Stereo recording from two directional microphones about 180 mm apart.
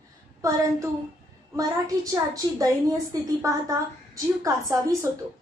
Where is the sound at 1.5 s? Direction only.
20° right (ahead or behind).